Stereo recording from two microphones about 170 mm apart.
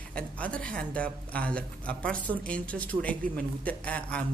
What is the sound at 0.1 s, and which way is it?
A woman's voice, 5° left (ahead or behind).